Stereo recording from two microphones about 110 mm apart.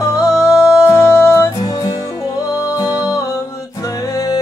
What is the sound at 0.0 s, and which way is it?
Music, 30° left (ahead or behind).